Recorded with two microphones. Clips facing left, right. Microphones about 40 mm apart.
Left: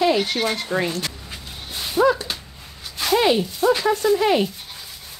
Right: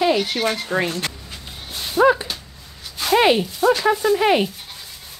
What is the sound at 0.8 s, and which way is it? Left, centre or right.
Speech, right.